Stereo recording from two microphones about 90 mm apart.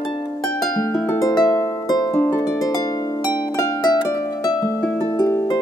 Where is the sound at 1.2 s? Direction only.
45° left (ahead or behind).